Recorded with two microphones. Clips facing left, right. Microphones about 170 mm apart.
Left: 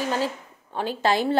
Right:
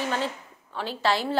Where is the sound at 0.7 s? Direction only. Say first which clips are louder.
Left 3 dB; 50° left (ahead or behind).